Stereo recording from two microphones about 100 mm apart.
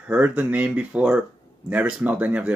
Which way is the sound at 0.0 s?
10° right (ahead or behind).